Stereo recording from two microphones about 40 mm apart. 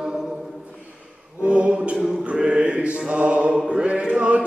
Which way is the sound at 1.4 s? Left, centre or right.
Right.